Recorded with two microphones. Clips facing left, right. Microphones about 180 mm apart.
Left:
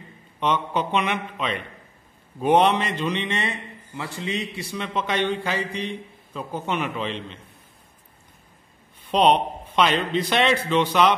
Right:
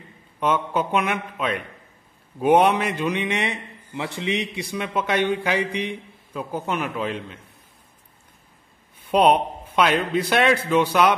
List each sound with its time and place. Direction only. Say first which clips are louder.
0.4 s a man's voice: right 1 dB; 5° right (ahead or behind)
9.1 s a man's voice: right 1 dB; 10° right (ahead or behind)